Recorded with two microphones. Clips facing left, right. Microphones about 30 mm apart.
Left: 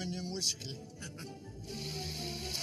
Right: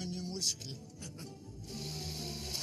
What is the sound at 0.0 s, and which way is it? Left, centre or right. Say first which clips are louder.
Music: left 1 dB; left.